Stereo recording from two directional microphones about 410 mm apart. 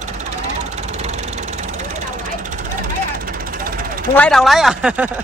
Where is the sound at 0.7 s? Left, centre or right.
Centre.